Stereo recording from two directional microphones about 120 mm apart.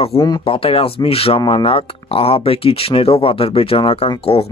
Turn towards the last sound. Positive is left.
turn(degrees=55)  # may be behind; listen again after turning